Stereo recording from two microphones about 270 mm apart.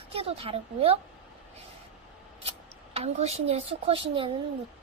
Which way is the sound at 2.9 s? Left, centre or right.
Right.